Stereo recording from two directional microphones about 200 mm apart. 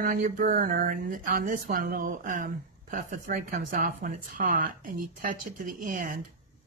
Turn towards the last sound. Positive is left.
turn(degrees=-45)  # may be behind; listen again after turning